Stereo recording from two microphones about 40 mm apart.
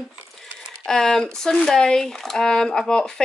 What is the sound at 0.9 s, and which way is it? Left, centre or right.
Speech, centre.